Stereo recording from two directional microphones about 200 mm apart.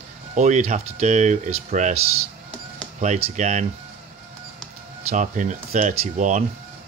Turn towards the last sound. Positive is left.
turn(degrees=-35)  # may be behind; listen again after turning